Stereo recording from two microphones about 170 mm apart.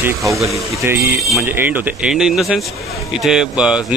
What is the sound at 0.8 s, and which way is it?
Speech, 15° right (ahead or behind).